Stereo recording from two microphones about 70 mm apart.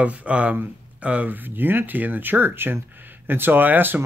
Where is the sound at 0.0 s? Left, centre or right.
Centre.